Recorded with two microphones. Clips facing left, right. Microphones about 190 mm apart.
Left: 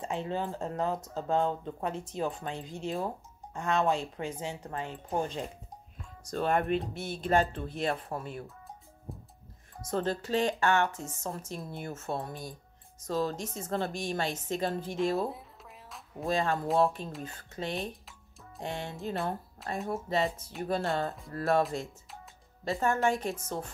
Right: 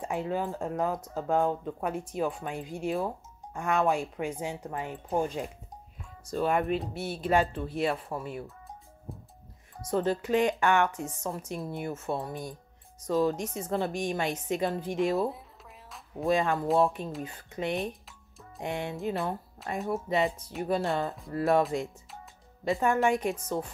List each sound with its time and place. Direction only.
0.0 s speech: 10° right (ahead or behind)
9.8 s speech: 10° right (ahead or behind)
16.3 s speech: 15° right (ahead or behind)
19.6 s speech: centre (ahead or behind)
20.1 s speech: 15° right (ahead or behind)
22.7 s speech: 15° right (ahead or behind)